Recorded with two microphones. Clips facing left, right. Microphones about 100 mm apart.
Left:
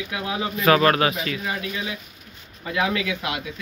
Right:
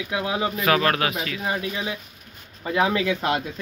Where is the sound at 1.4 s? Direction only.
30° right (ahead or behind).